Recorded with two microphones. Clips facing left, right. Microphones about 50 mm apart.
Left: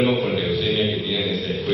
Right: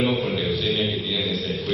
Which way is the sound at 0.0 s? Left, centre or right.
Centre.